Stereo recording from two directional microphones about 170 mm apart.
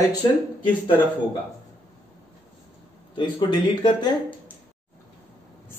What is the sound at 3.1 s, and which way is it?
Speech, 25° left (ahead or behind).